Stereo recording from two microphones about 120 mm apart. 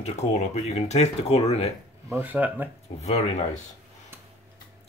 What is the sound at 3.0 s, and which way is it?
Speech, 65° left (ahead or behind).